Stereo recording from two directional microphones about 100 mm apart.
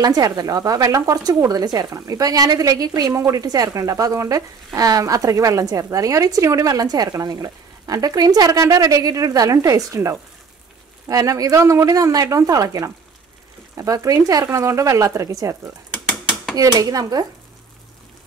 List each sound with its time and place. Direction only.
0.0 s a woman's voice: 40° right (ahead or behind)